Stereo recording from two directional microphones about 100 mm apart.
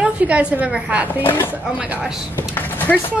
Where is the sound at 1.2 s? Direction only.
20° left (ahead or behind).